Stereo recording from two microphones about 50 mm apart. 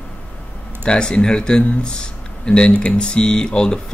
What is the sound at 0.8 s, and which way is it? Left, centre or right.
Speech, centre.